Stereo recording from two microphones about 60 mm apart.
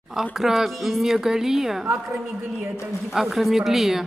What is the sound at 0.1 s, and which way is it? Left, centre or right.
A woman's voice, centre.